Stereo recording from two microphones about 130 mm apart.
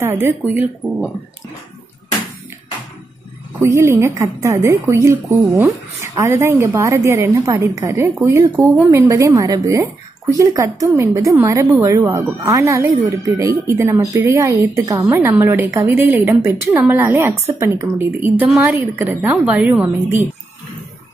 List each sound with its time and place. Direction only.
0.0 s a woman's voice: 20° right (ahead or behind)
3.6 s a woman's voice: 20° right (ahead or behind)